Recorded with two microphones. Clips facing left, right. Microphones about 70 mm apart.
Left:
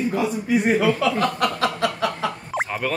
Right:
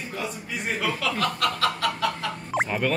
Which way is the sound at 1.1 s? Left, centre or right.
Centre.